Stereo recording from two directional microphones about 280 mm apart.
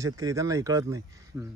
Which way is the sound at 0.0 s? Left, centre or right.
Centre.